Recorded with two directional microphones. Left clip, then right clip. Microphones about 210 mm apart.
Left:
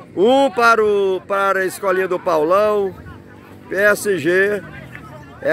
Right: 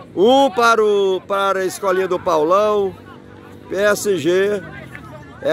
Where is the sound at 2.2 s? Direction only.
Centre (ahead or behind).